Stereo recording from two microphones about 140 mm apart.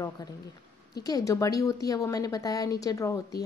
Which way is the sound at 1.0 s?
25° left (ahead or behind).